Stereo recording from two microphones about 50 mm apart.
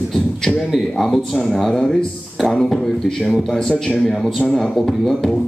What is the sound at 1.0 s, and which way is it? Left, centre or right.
Speech, centre.